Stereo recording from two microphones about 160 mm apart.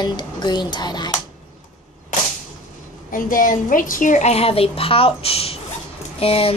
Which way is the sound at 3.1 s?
60° left (ahead or behind).